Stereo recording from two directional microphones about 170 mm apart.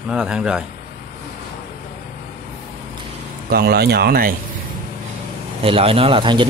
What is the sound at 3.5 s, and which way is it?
Speech, 65° right (ahead or behind).